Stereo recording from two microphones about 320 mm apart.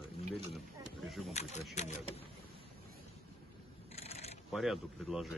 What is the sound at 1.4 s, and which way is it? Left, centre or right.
Speech, left.